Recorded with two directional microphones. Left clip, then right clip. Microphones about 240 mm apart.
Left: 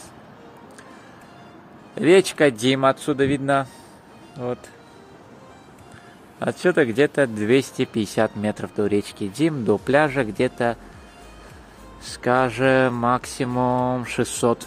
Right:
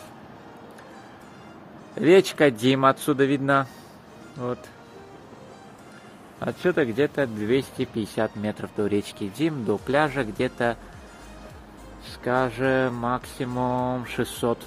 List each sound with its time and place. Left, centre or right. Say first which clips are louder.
2.0 s speech: left 2 dB; centre
6.4 s speech: left 4 dB; centre
12.0 s speech: left 4 dB; left